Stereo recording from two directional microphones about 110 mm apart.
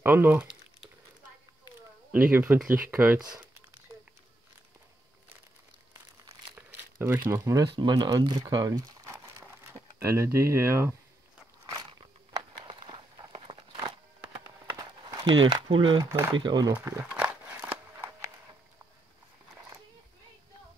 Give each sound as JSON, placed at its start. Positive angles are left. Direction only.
{"t": 0.0, "sound": "speech", "side_deg": -20}
{"t": 2.1, "sound": "speech", "side_deg": -15}
{"t": 6.5, "sound": "crumpling", "side_deg": -20}
{"t": 7.7, "sound": "speech", "side_deg": -45}
{"t": 9.9, "sound": "speech", "side_deg": -25}
{"t": 12.6, "sound": "walk", "side_deg": -45}
{"t": 13.5, "sound": "a sound", "side_deg": -60}
{"t": 15.2, "sound": "speech", "side_deg": -45}
{"t": 16.0, "sound": "speech", "side_deg": -25}
{"t": 16.3, "sound": "speech", "side_deg": -45}
{"t": 16.7, "sound": "speech", "side_deg": -20}
{"t": 17.1, "sound": "a sound", "side_deg": -15}